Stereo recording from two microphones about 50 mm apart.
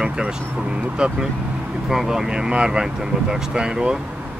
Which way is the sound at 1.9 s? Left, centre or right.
Centre.